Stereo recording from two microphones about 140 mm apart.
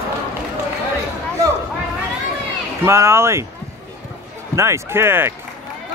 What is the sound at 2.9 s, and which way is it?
Speech, 20° right (ahead or behind).